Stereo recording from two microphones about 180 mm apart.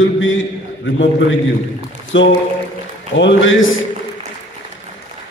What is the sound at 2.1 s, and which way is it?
A man's voice, 90° left.